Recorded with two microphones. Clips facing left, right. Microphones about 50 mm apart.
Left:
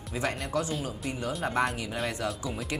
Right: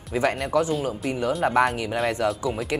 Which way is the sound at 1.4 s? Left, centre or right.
Right.